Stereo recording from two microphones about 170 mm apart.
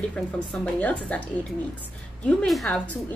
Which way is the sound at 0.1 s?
5° left (ahead or behind).